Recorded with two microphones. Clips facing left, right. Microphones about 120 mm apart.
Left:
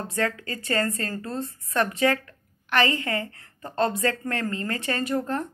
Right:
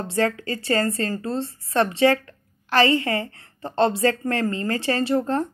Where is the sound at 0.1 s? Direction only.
30° right (ahead or behind).